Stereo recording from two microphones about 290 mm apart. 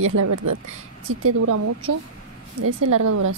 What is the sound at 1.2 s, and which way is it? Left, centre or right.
Speech, right.